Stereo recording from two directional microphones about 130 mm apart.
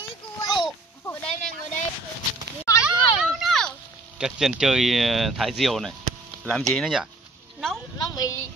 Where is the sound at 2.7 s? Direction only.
25° left (ahead or behind).